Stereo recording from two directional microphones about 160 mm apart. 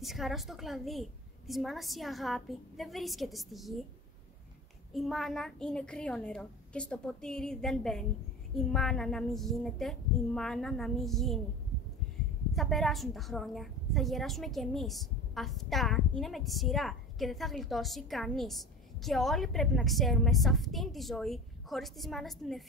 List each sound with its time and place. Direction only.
0.0 s a woman's voice: centre (ahead or behind)
4.9 s a woman's voice: centre (ahead or behind)
12.5 s a woman's voice: centre (ahead or behind)